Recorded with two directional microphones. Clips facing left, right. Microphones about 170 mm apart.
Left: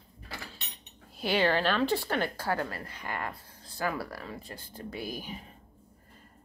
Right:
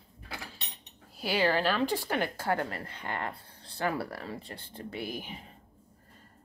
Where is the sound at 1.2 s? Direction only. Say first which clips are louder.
Left 1 dB; 10° right (ahead or behind).